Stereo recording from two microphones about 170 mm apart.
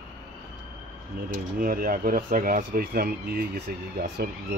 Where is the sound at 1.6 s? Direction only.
55° right (ahead or behind).